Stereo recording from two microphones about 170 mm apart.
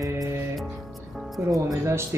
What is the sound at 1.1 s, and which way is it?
Music, centre (ahead or behind).